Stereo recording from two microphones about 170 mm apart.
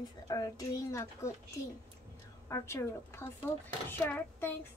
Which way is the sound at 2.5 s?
15° left (ahead or behind).